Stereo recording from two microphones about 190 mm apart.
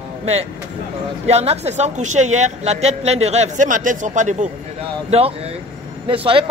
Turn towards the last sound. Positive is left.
turn(degrees=-25)  # may be behind; listen again after turning